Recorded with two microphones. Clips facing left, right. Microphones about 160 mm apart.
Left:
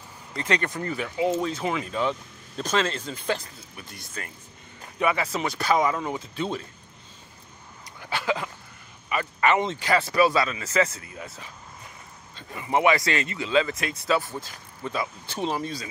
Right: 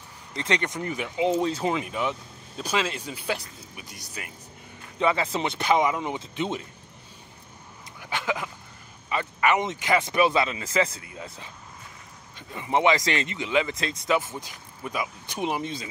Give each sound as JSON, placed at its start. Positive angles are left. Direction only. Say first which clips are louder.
{"t": 0.3, "sound": "speech", "louder": "left 1 dB", "side_deg": -20}
{"t": 1.4, "sound": "speech", "louder": "right 2 dB", "side_deg": -30}
{"t": 1.9, "sound": "speech", "louder": "left 2 dB", "side_deg": -15}
{"t": 4.9, "sound": "speech", "louder": "right 1 dB", "side_deg": -25}
{"t": 8.0, "sound": "a sound", "louder": "left 2 dB", "side_deg": -15}
{"t": 9.4, "sound": "speech", "louder": "left 1 dB", "side_deg": -15}